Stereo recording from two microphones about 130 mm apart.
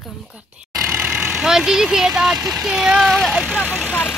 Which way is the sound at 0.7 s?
25° right (ahead or behind).